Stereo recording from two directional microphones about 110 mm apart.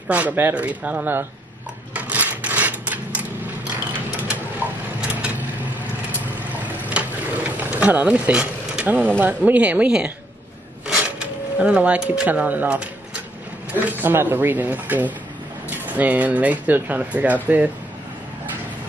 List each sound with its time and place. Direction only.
0.1 s speech: 15° right (ahead or behind)
2.0 s a sound: 15° right (ahead or behind)
4.6 s vehicle: 15° right (ahead or behind)
6.5 s a sound: 15° right (ahead or behind)
7.6 s speech: 15° right (ahead or behind)
13.8 s speech: 20° right (ahead or behind)